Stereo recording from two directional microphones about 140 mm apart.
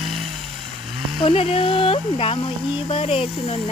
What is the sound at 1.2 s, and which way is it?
Speech, 45° left (ahead or behind).